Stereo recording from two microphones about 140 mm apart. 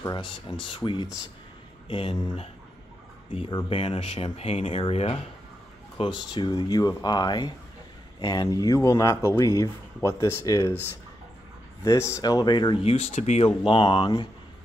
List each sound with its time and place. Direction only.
0.0 s speech: 30° left (ahead or behind)
12.8 s speech: 50° left (ahead or behind)
13.7 s speech: 35° left (ahead or behind)